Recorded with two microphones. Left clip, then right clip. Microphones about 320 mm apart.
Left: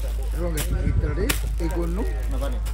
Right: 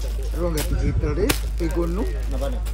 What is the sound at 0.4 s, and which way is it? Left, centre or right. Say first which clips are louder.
Music: right 4 dB; centre.